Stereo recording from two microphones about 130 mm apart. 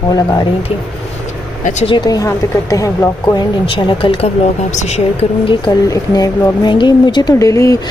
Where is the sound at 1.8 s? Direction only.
35° left (ahead or behind).